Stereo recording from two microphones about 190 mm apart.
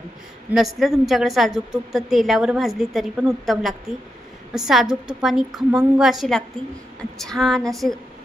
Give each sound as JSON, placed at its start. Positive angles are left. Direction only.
{"t": 0.5, "sound": "a woman's voice", "side_deg": 0}